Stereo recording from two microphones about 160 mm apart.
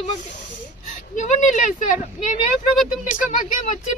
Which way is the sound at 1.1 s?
50° left (ahead or behind).